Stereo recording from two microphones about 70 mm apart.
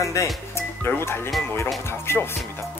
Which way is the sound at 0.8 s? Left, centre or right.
Left.